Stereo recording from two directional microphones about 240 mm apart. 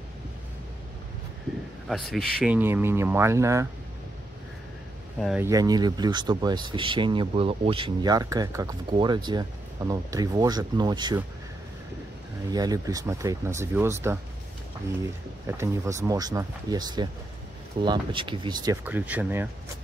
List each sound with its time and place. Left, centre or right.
1.9 s speech: centre
5.2 s speech: centre
5.5 s speech: centre
12.4 s speech: centre
15.4 s speech: centre